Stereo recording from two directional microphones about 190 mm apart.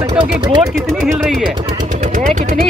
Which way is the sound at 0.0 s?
30° right (ahead or behind).